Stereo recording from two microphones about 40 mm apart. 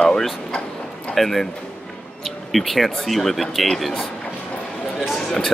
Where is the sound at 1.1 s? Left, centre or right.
Centre.